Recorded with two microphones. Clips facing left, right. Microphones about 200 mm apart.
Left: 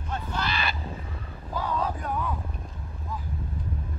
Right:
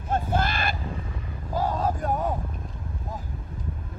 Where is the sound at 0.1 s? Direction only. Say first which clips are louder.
Right 6 dB; 50° right (ahead or behind).